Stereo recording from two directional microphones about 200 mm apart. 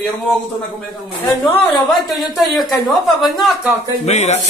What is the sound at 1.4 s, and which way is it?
Speech, 10° left (ahead or behind).